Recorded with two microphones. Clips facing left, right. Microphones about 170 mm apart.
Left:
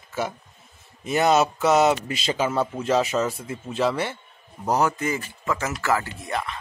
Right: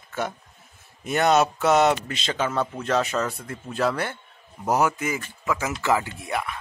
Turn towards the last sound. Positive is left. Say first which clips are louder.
# even
turn(degrees=-10)  # may be behind; listen again after turning